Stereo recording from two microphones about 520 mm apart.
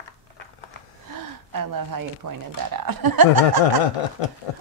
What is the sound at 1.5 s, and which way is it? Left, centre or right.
Speech, right.